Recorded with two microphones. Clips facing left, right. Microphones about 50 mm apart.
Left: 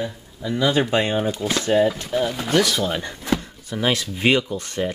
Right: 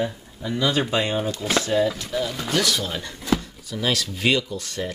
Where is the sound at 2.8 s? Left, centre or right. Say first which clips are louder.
Left 5 dB; left.